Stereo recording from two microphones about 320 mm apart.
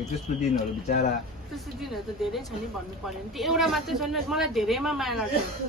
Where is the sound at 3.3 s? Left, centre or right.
Centre.